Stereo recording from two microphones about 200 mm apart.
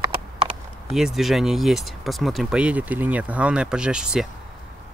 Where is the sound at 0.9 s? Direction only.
Centre (ahead or behind).